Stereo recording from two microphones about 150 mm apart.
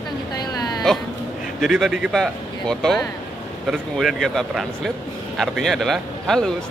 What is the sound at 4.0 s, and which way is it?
Speech, centre (ahead or behind).